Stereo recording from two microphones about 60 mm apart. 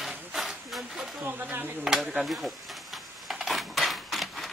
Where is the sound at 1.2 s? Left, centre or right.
Right.